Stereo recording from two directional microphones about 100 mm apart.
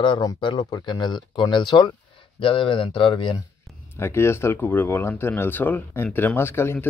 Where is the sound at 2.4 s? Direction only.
60° left (ahead or behind).